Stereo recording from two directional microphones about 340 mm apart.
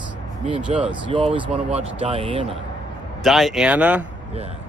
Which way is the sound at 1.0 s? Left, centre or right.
Centre.